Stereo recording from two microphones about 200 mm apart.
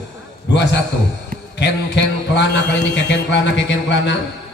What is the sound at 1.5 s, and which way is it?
A man's voice, 60° left (ahead or behind).